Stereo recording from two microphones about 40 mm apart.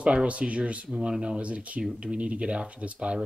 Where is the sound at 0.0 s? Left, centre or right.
Right.